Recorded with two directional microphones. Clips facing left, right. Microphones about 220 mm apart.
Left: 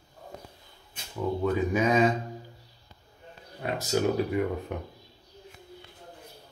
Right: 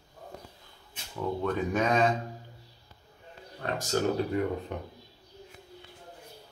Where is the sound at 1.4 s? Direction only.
5° left (ahead or behind).